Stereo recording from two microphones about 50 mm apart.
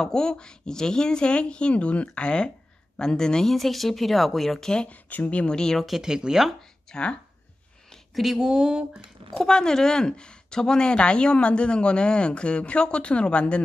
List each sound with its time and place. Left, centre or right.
0.0 s speech: centre
4.8 s speech: left
5.6 s speech: centre
5.9 s a woman's voice: centre
6.9 s speech: left
8.1 s a woman's voice: centre
9.3 s speech: centre